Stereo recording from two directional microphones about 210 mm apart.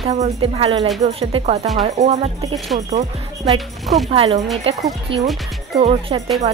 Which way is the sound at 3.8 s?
Centre (ahead or behind).